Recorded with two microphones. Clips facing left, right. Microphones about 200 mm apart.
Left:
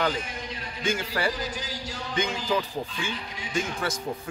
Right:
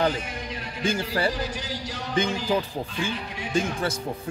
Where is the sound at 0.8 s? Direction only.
35° right (ahead or behind).